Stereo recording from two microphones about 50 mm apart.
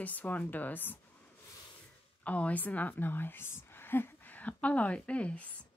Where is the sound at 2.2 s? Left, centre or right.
Left.